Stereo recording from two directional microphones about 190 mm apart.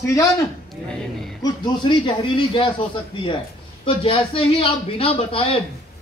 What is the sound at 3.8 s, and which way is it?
A man's voice, 30° left (ahead or behind).